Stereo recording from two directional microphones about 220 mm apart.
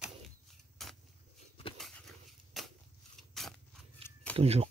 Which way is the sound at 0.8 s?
Centre (ahead or behind).